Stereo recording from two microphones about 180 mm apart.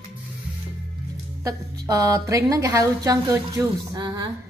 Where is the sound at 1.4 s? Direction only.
20° right (ahead or behind).